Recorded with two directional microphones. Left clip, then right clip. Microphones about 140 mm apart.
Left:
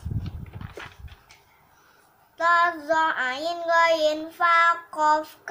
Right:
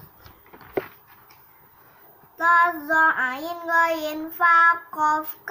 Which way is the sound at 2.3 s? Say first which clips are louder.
Right 2 dB; 20° left (ahead or behind).